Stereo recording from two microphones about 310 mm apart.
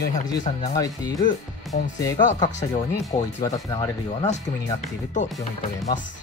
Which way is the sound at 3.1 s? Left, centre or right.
Centre.